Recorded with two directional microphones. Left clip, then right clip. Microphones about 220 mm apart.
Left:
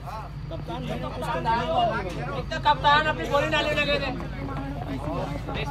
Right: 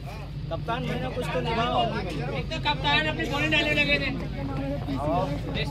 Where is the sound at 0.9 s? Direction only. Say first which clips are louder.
Even; 5° right (ahead or behind).